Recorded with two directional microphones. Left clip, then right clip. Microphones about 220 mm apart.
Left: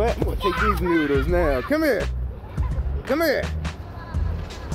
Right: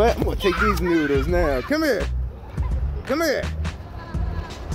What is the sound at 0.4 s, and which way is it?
Speech, 30° right (ahead or behind).